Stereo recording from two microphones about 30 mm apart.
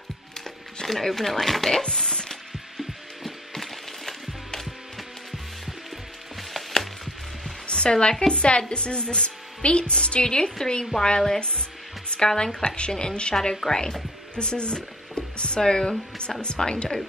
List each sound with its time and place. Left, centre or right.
0.8 s speech: centre
1.8 s chopping: left
3.5 s music: centre
6.5 s a sound: centre
7.6 s a sound: left
8.3 s a woman's voice: left
10.9 s speech: centre
11.3 s a woman's voice: left
12.1 s music: left
12.6 s a woman's voice: left
14.3 s music: left
15.6 s a woman's voice: left